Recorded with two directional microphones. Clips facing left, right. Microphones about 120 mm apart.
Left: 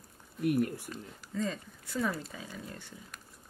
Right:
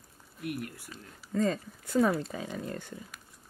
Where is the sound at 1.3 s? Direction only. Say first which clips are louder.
Right 6 dB; 45° right (ahead or behind).